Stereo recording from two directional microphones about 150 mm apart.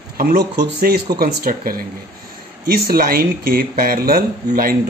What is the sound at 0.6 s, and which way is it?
Speech, 90° right.